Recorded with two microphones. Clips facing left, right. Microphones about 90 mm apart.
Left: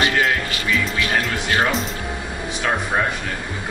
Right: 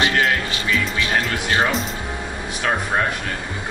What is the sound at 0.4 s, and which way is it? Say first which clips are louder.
Music: even; 25° right (ahead or behind).